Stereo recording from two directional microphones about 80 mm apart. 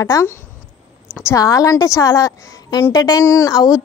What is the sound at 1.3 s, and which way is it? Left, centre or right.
A woman's voice, left.